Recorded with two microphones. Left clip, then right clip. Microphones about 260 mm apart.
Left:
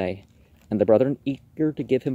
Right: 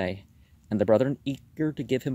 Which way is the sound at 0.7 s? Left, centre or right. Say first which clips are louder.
Left 4 dB; right.